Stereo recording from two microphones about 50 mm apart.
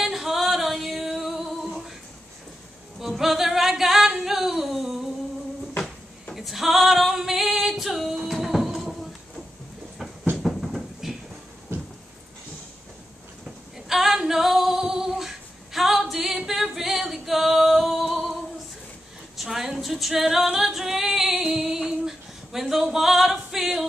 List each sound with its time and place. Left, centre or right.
0.0 s music: centre
3.0 s singing: centre
6.3 s female singing: centre
10.3 s a sound: centre
11.7 s a sound: right
13.7 s female singing: centre
16.4 s a capella: centre
19.3 s female singing: centre